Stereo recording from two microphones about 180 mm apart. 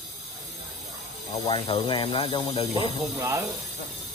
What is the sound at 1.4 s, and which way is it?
Speech, 25° left (ahead or behind).